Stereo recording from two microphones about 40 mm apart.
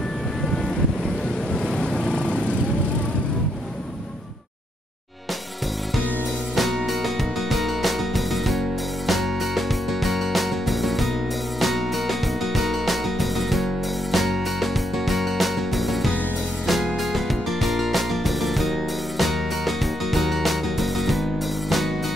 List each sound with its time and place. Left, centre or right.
1.5 s vehicle: centre
6.5 s music: centre